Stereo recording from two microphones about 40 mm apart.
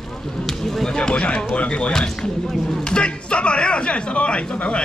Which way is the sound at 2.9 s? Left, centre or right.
Left.